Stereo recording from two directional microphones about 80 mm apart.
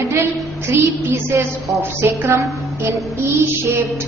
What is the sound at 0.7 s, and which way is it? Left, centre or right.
A woman's voice, right.